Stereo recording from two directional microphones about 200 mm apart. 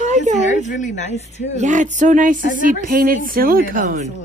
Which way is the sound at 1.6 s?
35° right (ahead or behind).